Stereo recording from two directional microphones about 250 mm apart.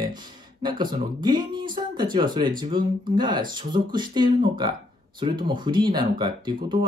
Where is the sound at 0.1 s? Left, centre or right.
Centre.